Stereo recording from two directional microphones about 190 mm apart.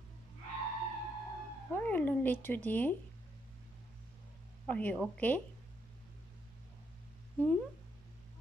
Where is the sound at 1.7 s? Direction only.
10° left (ahead or behind).